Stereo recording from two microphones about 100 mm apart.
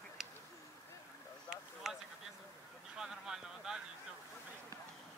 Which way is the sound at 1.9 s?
5° right (ahead or behind).